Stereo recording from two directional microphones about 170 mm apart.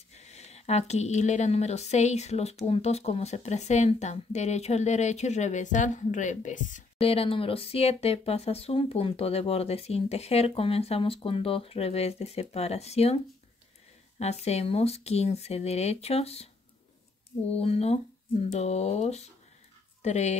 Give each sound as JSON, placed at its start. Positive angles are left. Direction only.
{"t": 0.1, "sound": "speech", "side_deg": 40}
{"t": 17.6, "sound": "speech", "side_deg": 35}